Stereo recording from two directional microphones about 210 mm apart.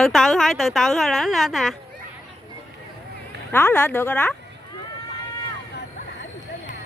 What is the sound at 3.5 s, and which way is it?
Speech, 10° left (ahead or behind).